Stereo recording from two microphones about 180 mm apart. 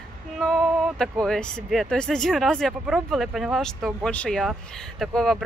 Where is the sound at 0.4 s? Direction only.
5° left (ahead or behind).